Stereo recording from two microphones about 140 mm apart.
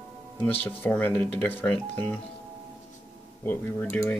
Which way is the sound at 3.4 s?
15° left (ahead or behind).